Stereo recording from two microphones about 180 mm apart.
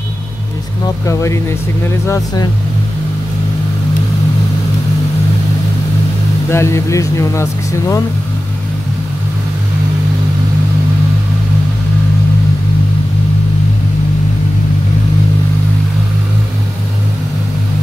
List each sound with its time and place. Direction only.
0.8 s speech: 15° left (ahead or behind)
6.5 s speech: 15° left (ahead or behind)